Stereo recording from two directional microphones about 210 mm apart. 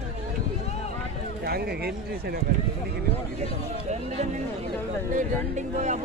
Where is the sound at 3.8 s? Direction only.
35° right (ahead or behind).